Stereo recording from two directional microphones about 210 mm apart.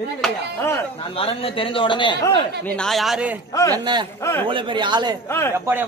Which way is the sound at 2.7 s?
Centre (ahead or behind).